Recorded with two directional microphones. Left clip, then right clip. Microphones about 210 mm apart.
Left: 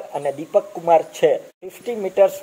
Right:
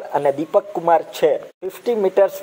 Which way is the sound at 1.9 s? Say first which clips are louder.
Right 1 dB; 45° right (ahead or behind).